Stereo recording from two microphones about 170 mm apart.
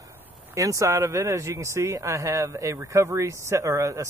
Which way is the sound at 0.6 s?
20° right (ahead or behind).